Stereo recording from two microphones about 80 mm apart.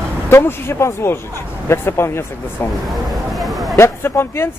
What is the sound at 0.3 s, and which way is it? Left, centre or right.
Speech, left.